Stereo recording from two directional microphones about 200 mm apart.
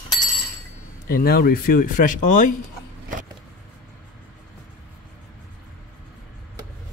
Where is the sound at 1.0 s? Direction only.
50° left (ahead or behind).